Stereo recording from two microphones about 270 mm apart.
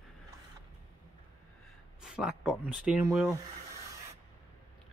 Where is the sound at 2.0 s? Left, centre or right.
Centre.